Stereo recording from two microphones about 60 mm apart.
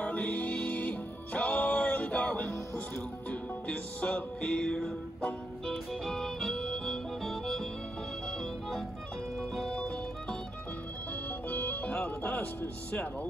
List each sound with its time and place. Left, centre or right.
0.1 s music: left; by 9.8 s centre
11.4 s music: left
12.9 s speech: left